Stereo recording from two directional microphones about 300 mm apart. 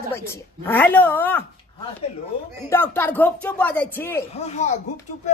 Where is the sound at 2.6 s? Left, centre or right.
Centre.